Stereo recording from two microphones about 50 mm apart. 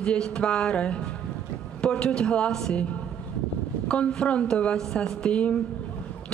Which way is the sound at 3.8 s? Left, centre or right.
Centre.